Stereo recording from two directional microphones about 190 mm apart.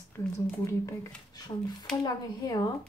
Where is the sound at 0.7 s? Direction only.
15° left (ahead or behind).